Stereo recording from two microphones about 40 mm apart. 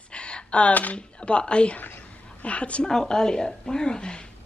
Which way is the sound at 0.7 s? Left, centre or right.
Left.